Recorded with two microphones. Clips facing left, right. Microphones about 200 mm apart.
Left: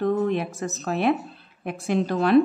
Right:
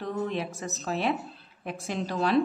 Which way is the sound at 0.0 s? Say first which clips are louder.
Left 8 dB; 50° left (ahead or behind).